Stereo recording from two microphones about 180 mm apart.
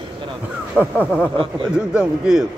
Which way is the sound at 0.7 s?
5° right (ahead or behind).